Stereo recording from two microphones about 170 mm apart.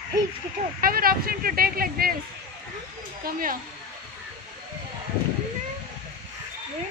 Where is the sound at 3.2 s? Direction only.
60° right (ahead or behind).